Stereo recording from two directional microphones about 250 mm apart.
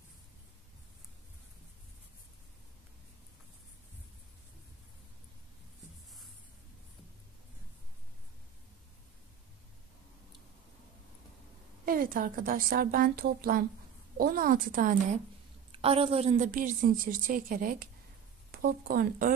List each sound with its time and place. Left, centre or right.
11.8 s a woman's voice: right
15.7 s a woman's voice: right